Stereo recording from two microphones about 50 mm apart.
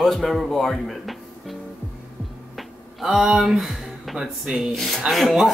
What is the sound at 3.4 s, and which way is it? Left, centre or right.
Speech, centre.